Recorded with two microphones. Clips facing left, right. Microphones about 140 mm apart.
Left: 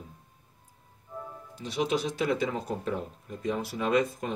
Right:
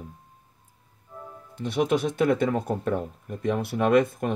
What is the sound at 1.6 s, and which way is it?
Speech, 55° right (ahead or behind).